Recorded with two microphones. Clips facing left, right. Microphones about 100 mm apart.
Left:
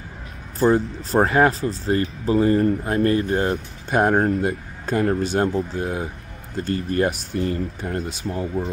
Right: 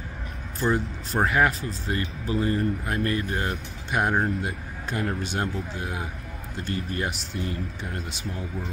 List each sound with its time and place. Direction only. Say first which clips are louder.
0.6 s speech: left 7 dB; 35° left (ahead or behind)